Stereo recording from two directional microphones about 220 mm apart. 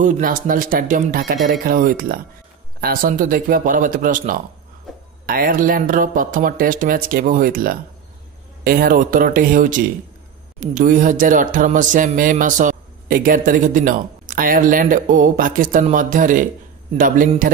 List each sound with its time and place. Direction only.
0.0 s speech: 40° right (ahead or behind)